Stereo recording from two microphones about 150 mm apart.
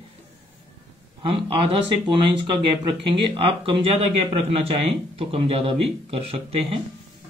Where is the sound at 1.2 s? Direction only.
40° right (ahead or behind).